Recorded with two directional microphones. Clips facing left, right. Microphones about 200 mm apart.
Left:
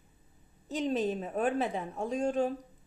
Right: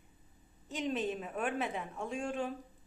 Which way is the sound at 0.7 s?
35° left (ahead or behind).